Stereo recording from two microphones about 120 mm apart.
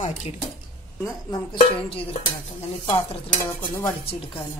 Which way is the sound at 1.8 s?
50° left (ahead or behind).